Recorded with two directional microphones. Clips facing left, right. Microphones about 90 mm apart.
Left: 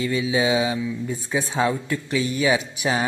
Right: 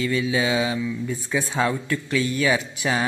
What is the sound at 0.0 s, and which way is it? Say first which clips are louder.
A man's voice: left 1 dB; 20° left (ahead or behind).